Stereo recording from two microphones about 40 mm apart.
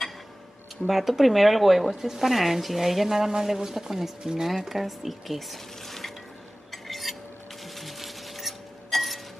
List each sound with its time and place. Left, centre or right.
0.8 s speech: centre
4.2 s speech: right
4.5 s speech: centre
6.7 s a sound: centre